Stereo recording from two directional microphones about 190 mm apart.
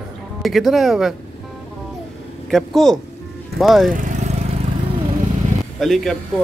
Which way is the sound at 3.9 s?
40° right (ahead or behind).